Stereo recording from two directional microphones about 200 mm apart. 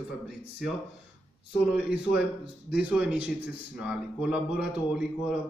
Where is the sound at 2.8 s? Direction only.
5° right (ahead or behind).